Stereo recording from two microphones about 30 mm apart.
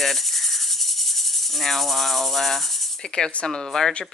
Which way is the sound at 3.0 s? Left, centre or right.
Left.